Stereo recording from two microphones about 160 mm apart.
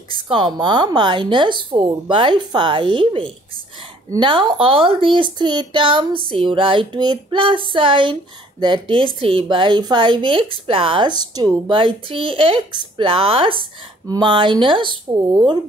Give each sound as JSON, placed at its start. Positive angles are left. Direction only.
{"t": 0.1, "sound": "a woman's voice", "side_deg": -30}